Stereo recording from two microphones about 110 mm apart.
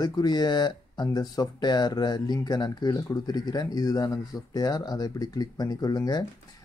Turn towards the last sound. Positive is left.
turn(degrees=35)  # may be behind; listen again after turning